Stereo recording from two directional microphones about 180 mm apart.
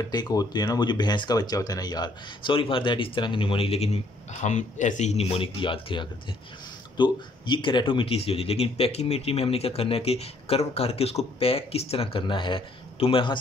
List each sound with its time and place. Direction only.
0.1 s a man's voice: 20° left (ahead or behind)